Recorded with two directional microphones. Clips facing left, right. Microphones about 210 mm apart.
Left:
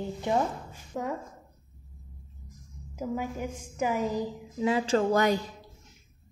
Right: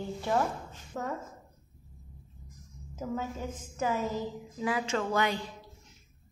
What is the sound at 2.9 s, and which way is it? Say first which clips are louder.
A woman's voice: left 3 dB; 10° left (ahead or behind).